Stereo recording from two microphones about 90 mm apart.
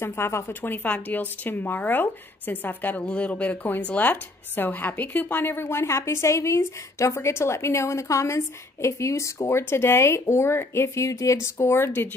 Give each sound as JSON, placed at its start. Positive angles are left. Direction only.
{"t": 0.0, "sound": "speech", "side_deg": 30}